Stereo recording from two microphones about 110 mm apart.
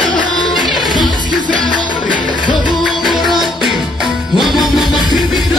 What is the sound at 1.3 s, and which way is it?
Music, 45° left (ahead or behind).